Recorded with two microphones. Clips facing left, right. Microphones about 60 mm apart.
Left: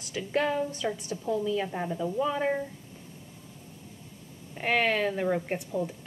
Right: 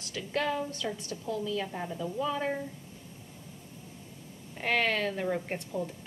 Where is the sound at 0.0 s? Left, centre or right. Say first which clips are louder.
Left 3 dB; centre.